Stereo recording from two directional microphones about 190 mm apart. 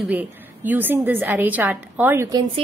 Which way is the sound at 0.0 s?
10° right (ahead or behind).